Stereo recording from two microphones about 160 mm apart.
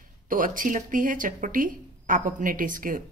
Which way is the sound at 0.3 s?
60° right (ahead or behind).